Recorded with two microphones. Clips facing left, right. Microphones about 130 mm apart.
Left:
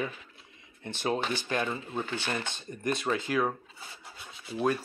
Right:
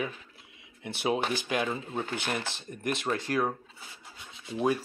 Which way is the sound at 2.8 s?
Centre (ahead or behind).